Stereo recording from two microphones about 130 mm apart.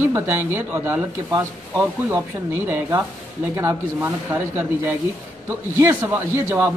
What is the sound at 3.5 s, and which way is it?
Speech, 20° right (ahead or behind).